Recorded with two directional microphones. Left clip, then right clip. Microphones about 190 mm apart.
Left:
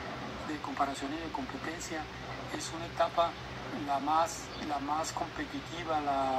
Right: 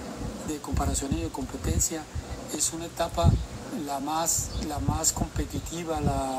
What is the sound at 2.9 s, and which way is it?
Speech, 20° right (ahead or behind).